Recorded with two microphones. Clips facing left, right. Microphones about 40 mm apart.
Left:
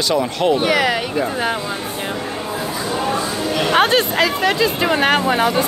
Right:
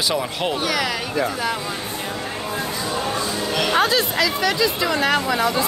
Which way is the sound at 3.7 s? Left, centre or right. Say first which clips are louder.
Left 5 dB; left.